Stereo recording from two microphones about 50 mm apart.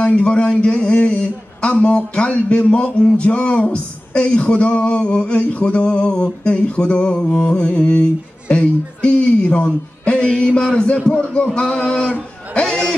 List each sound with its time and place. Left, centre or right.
0.0 s a man's voice: left